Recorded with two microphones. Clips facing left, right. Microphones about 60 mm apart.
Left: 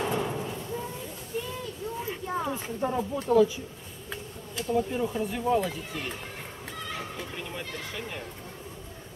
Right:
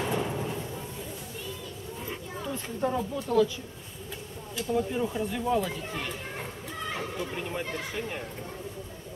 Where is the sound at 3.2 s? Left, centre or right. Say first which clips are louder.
Left 3 dB; left.